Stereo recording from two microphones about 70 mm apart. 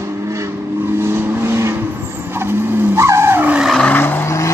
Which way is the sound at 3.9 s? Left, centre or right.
Left.